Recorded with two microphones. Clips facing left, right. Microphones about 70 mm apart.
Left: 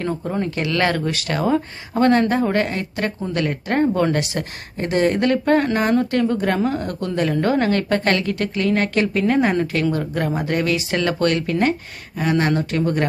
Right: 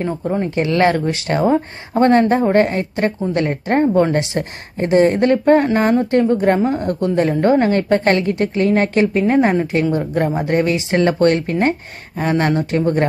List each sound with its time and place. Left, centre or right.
0.4 s speech: right